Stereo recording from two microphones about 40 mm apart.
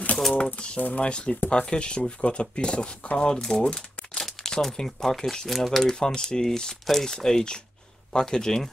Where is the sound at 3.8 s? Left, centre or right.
Left.